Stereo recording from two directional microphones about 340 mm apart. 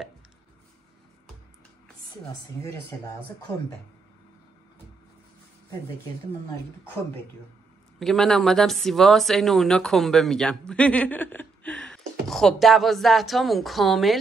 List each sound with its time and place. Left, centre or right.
8.0 s speech: centre